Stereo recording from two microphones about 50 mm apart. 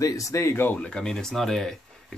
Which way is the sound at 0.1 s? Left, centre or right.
Left.